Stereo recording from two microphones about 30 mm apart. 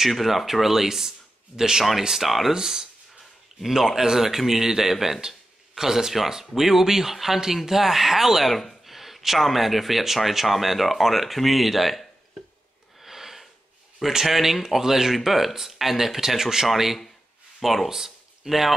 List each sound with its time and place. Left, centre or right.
0.1 s speech: centre
2.5 s speech: centre
3.9 s speech: centre
13.0 s sniff: centre
14.0 s speech: centre
17.8 s speech: centre